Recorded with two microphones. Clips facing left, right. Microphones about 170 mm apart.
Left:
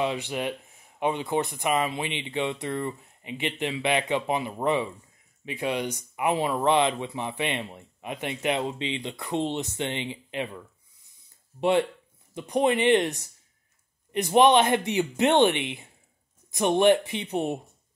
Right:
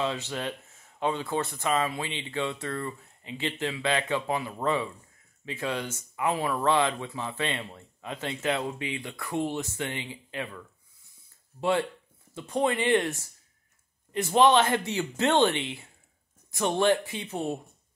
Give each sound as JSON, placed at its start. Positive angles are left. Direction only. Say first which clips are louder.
{"t": 0.0, "sound": "speech", "louder": "left 3 dB", "side_deg": 15}
{"t": 12.4, "sound": "speech", "louder": "left 3 dB", "side_deg": 15}